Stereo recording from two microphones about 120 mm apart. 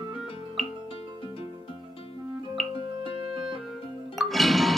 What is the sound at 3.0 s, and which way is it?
Music, 45° right (ahead or behind).